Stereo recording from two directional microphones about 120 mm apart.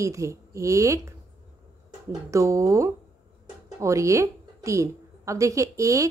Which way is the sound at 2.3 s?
25° right (ahead or behind).